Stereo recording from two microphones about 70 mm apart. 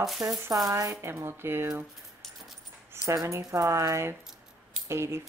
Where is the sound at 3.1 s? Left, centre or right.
Right.